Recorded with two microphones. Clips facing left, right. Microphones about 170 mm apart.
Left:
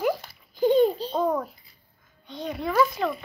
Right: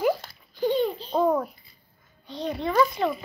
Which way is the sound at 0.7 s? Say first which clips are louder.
Left 5 dB; 40° left (ahead or behind).